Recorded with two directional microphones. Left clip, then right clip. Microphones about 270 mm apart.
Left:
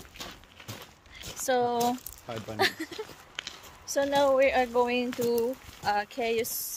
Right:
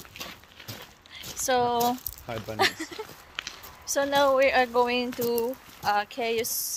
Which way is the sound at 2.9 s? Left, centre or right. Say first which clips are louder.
Right 2 dB; right.